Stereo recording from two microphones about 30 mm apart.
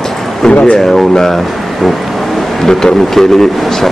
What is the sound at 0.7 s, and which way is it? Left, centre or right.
Speech, centre.